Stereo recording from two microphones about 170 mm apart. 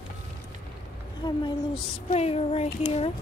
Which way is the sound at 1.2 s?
25° left (ahead or behind).